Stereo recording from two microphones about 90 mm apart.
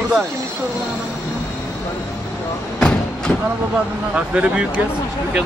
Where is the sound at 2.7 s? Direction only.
10° left (ahead or behind).